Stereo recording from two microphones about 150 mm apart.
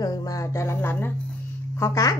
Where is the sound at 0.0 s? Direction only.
25° left (ahead or behind).